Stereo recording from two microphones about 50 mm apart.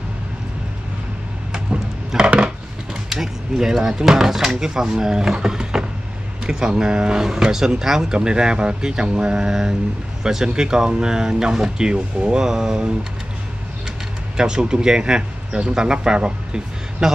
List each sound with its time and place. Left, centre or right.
1.5 s a sound: centre
3.1 s speech: centre
14.3 s speech: centre